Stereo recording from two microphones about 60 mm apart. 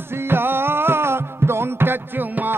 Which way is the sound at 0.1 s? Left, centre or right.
Right.